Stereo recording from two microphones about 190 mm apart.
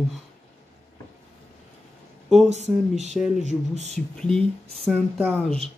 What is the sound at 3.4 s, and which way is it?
Speech, 35° right (ahead or behind).